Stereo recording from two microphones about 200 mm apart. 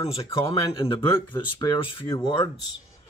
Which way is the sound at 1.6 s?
20° left (ahead or behind).